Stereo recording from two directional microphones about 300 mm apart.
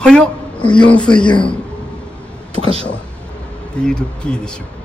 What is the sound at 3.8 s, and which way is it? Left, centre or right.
Speech, centre.